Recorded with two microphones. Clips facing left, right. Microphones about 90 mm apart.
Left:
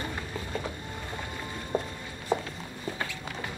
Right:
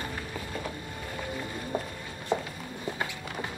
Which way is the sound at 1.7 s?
15° right (ahead or behind).